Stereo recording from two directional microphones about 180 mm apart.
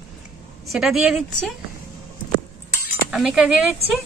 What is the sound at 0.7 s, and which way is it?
Speech, centre (ahead or behind).